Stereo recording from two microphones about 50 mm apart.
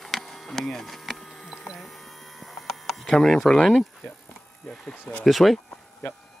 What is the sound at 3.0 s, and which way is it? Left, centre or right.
Speech, centre.